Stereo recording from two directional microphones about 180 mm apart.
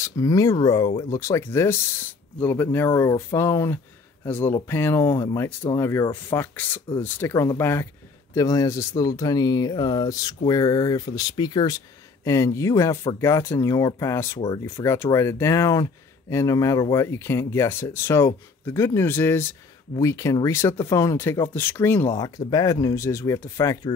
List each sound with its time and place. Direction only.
0.0 s speech: 20° left (ahead or behind)